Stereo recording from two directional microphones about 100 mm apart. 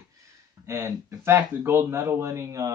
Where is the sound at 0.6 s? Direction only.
30° right (ahead or behind).